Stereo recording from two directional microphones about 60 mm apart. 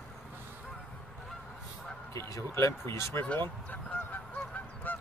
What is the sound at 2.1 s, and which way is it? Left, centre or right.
Speech, left.